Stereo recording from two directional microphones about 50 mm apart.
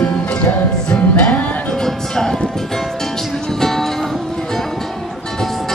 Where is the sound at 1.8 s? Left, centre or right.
Centre.